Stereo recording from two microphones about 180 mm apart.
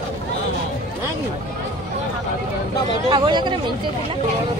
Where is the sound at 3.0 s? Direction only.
25° right (ahead or behind).